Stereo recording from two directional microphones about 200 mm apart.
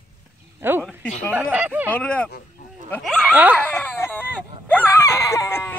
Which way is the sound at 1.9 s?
5° left (ahead or behind).